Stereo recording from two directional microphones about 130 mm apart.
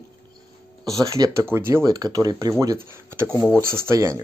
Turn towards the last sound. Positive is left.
turn(degrees=-20)  # may be behind; listen again after turning